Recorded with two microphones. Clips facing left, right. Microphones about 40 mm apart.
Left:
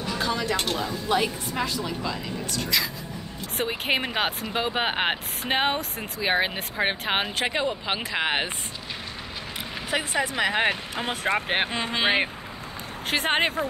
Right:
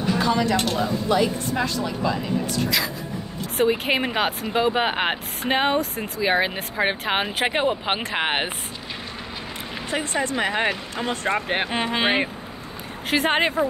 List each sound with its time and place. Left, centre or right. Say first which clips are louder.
0.0 s a sound: right 6 dB; centre
1.0 s speech: right 3 dB; centre
1.5 s speech: right 4 dB; centre
2.0 s speech: right 7 dB; centre
7.2 s speech: right 3 dB; centre
7.5 s speech: right 4 dB; right
9.8 s speech: right 1 dB; centre
11.9 s speech: right 1 dB; centre